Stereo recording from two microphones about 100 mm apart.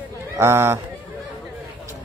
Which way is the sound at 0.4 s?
25° right (ahead or behind).